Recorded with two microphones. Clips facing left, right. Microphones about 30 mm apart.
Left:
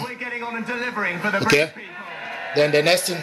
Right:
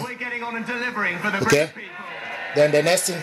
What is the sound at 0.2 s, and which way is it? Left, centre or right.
A man's voice, centre.